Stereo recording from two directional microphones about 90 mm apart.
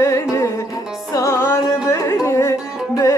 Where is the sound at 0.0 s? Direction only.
35° left (ahead or behind).